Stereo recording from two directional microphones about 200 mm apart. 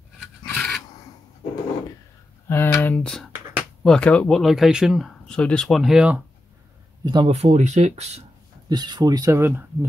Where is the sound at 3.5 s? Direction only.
5° right (ahead or behind).